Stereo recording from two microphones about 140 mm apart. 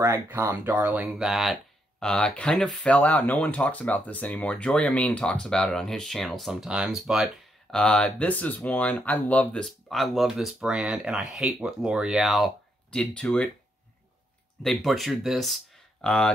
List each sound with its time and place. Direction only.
0.0 s speech: 20° right (ahead or behind); by 13.5 s 10° left (ahead or behind)
14.6 s speech: centre (ahead or behind)